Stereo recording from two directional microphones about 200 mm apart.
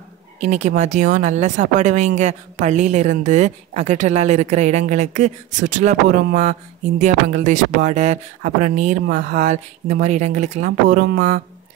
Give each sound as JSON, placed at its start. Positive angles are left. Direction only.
{"t": 0.4, "sound": "a woman's voice", "side_deg": -35}